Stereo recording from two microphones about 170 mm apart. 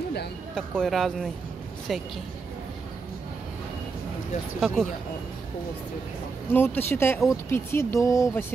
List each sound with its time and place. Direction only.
0.6 s speech: centre (ahead or behind)
4.6 s speech: centre (ahead or behind)
6.5 s speech: 10° left (ahead or behind)